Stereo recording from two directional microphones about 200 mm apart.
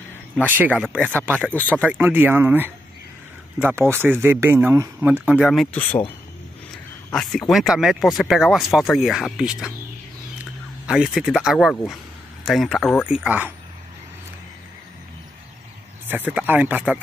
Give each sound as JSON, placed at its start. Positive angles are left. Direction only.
{"t": 0.4, "sound": "speech", "side_deg": -10}
{"t": 1.3, "sound": "speech", "side_deg": 10}
{"t": 1.7, "sound": "speech", "side_deg": -5}
{"t": 7.1, "sound": "speech", "side_deg": 0}
{"t": 10.9, "sound": "speech", "side_deg": -5}
{"t": 16.1, "sound": "speech", "side_deg": -10}